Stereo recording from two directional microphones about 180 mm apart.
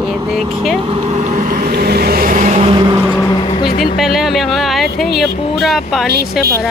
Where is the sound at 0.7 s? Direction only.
30° right (ahead or behind).